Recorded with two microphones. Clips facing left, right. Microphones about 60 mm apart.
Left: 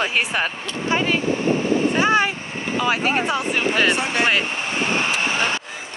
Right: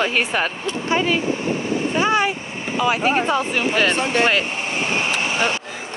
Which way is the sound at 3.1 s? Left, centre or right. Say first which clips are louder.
Right 2 dB; centre.